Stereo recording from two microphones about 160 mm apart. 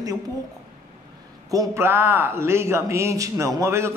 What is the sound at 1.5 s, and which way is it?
Speech, 20° right (ahead or behind).